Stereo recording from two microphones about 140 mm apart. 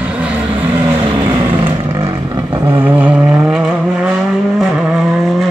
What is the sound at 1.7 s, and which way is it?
Vehicle, 15° right (ahead or behind).